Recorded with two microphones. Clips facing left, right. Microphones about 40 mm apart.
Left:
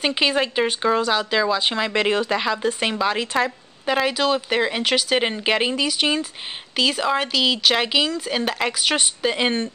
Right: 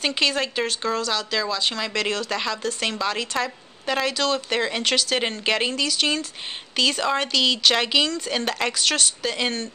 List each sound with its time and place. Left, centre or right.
0.0 s speech: centre